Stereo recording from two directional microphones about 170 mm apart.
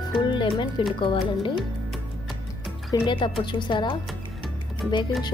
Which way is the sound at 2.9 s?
30° left (ahead or behind).